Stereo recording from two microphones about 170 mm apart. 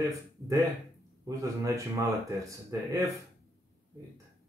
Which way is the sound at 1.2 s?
20° right (ahead or behind).